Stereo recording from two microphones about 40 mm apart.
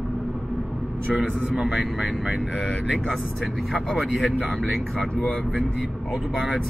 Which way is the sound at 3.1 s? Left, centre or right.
Centre.